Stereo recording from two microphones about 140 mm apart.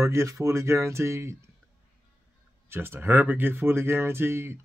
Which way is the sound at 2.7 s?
15° right (ahead or behind).